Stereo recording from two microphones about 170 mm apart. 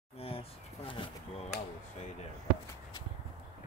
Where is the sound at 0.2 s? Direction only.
35° left (ahead or behind).